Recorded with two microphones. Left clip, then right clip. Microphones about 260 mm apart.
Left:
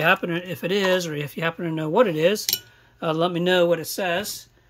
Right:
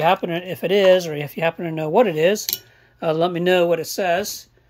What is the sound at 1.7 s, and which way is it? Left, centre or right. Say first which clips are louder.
Speech: right 3 dB; left.